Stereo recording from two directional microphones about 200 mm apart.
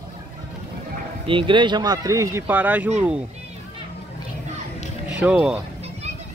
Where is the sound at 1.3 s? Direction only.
25° right (ahead or behind); by 2.9 s 10° right (ahead or behind).